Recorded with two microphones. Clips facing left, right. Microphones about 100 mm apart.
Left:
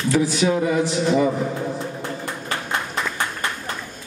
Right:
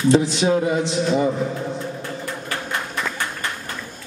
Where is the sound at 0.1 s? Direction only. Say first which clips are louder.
Right 1 dB; 25° right (ahead or behind).